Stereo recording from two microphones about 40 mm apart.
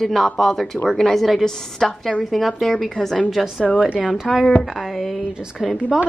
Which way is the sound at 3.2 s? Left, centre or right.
Centre.